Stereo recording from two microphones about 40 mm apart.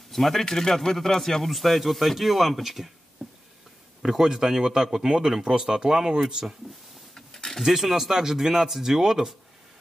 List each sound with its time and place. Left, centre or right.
0.1 s a man's voice: centre
4.2 s speech: centre
7.2 s a sound: centre
7.6 s speech: centre